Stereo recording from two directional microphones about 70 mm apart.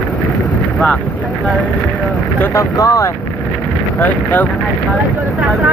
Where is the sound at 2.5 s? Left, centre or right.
Left.